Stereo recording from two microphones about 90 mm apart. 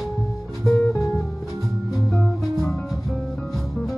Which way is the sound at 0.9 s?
30° left (ahead or behind).